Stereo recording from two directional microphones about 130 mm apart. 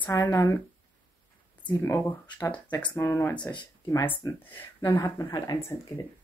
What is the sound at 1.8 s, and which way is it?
Speech, 15° left (ahead or behind).